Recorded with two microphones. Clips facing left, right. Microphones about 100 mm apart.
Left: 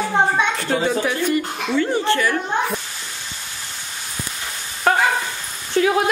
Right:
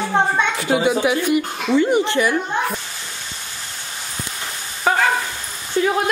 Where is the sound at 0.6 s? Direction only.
10° right (ahead or behind).